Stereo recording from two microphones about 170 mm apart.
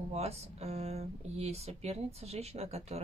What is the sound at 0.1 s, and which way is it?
Speech, 40° right (ahead or behind).